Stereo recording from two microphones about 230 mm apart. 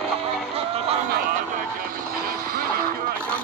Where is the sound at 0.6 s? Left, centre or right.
Right.